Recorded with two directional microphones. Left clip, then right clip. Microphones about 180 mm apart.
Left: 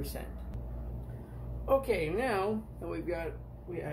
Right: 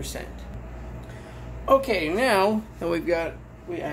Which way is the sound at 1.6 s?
25° right (ahead or behind).